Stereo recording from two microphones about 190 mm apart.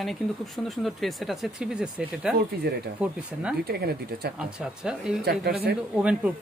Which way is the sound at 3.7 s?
55° right (ahead or behind).